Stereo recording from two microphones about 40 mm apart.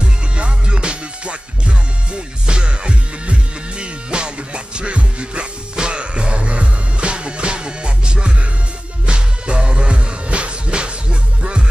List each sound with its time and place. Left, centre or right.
0.0 s music: right